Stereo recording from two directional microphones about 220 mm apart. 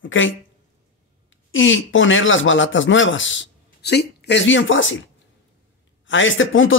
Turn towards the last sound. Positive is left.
turn(degrees=60)  # may be behind; listen again after turning